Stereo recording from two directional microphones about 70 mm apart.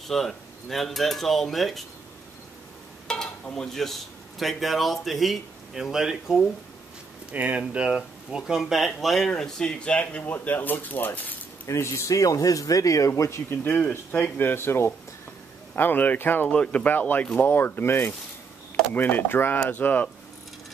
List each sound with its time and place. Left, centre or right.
0.1 s a man's voice: centre
3.4 s a man's voice: centre
7.3 s speech: centre; by 11.3 s left
11.6 s speech: left
13.7 s speech: centre